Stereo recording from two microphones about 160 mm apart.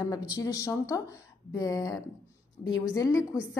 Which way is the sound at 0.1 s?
20° left (ahead or behind).